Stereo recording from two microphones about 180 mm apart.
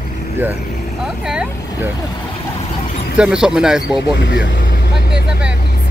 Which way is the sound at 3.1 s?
5° right (ahead or behind).